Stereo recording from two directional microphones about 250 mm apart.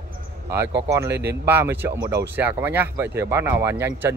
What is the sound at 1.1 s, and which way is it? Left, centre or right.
Speech, right.